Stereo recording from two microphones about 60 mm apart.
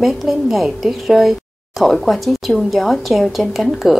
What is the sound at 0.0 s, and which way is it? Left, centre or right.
Speech, centre.